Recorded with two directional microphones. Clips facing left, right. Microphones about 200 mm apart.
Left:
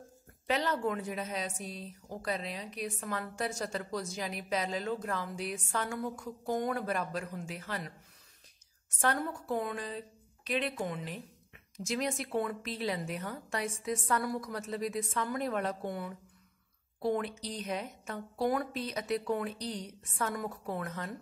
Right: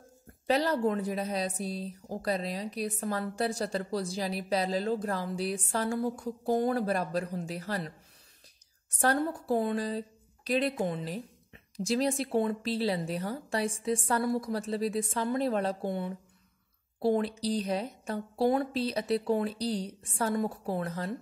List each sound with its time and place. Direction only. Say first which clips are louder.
0.5 s a woman's voice: right 5 dB; 35° right (ahead or behind)
8.9 s a woman's voice: right 4 dB; 35° right (ahead or behind)